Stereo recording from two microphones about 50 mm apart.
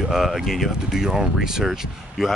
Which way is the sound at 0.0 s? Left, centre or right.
Centre.